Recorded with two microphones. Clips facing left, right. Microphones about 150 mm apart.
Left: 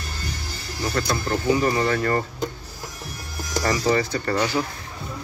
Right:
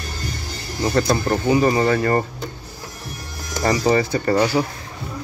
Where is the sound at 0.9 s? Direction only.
45° right (ahead or behind).